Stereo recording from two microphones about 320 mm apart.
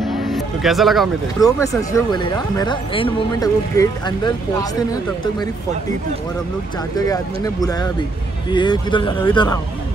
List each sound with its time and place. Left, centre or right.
0.0 s vehicle: centre
1.4 s speech: centre
7.0 s speech: centre